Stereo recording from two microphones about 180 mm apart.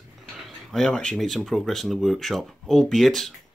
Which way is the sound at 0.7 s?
5° left (ahead or behind).